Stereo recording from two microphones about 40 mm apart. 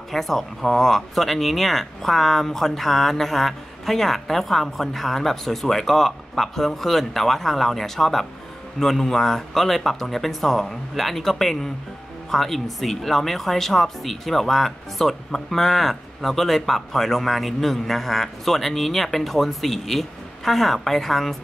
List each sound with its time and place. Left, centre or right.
0.1 s speech: centre